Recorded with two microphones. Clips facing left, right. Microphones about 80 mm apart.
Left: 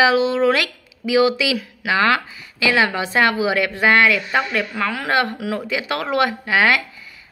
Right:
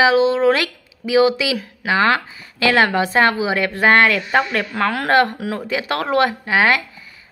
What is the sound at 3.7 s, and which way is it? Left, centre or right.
A woman's voice, right.